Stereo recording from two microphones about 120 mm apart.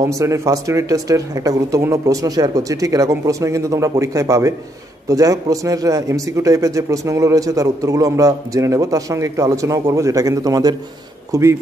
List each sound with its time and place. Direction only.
0.0 s a man's voice: 25° right (ahead or behind)